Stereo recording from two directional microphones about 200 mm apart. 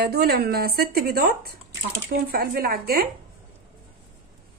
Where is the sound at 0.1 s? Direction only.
50° right (ahead or behind).